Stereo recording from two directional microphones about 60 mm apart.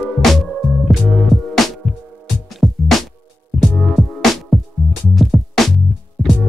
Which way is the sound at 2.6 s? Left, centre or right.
Centre.